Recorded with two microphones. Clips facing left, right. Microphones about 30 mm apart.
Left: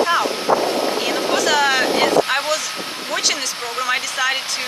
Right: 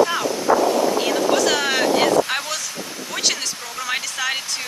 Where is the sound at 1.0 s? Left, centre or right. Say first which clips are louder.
Even; centre.